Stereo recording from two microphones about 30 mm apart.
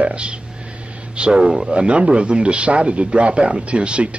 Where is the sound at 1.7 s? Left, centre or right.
Right.